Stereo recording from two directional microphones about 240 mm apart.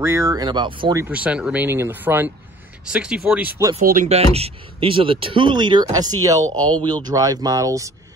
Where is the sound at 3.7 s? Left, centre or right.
Right; by 6.5 s centre.